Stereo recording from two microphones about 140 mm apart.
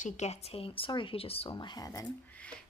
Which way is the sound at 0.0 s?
50° left (ahead or behind).